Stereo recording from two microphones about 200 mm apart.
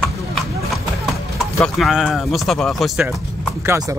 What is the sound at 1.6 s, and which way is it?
Speech, centre (ahead or behind).